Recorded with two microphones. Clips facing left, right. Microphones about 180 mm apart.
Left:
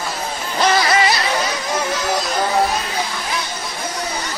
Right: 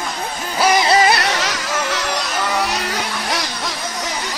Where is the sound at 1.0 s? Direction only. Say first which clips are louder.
Right 1 dB; 70° right (ahead or behind); by 2.0 s 85° right.